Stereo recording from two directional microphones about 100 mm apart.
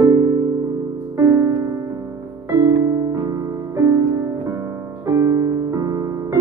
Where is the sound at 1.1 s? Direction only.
30° right (ahead or behind).